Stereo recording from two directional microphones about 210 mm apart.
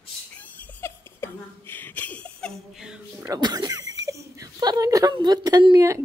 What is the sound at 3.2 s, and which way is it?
Speech, 20° right (ahead or behind).